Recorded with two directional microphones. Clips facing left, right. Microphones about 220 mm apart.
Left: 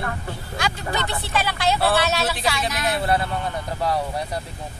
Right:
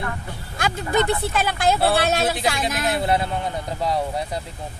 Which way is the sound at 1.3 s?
50° right (ahead or behind).